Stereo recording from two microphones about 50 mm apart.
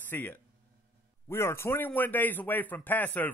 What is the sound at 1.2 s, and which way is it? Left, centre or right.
Speech, left.